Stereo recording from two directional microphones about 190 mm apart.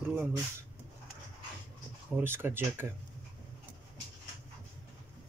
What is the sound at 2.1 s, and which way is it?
Speech, 10° right (ahead or behind).